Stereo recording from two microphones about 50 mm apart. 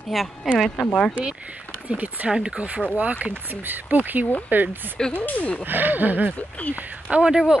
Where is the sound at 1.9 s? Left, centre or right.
Right.